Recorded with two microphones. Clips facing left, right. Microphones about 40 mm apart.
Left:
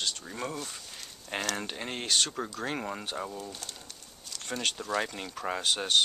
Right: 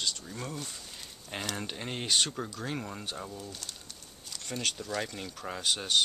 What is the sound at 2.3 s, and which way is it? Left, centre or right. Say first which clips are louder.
Speech: left 2 dB; centre.